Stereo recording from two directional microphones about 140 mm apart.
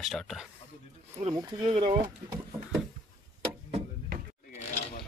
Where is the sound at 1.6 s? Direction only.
40° right (ahead or behind).